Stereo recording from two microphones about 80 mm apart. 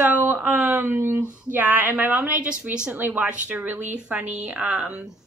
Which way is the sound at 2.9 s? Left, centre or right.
Right.